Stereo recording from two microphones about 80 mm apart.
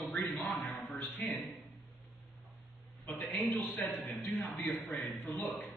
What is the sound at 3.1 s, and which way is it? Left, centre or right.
A man's voice, left.